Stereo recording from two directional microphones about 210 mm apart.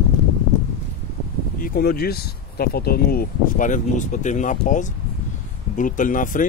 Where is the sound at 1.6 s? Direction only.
45° left (ahead or behind).